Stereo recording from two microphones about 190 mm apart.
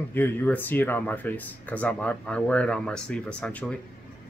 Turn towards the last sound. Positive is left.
turn(degrees=5)  # may be behind; listen again after turning